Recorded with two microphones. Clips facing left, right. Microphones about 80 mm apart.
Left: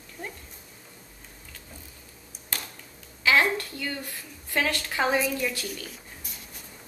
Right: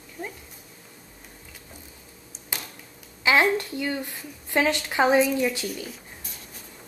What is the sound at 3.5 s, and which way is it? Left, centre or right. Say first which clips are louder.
A woman's voice: right 5 dB; right.